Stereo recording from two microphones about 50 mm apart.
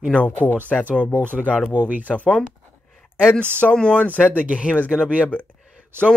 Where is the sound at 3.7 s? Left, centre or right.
Centre.